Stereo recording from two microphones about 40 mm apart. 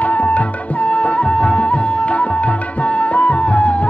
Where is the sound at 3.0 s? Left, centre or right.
Left.